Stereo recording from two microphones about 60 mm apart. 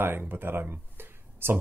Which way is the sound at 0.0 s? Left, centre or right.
Right.